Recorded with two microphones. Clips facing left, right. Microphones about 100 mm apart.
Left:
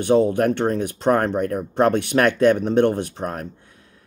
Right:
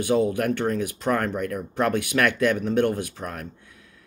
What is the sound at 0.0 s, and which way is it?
Speech, 30° left (ahead or behind).